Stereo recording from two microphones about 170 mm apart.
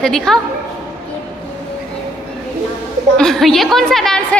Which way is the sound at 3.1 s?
Centre (ahead or behind).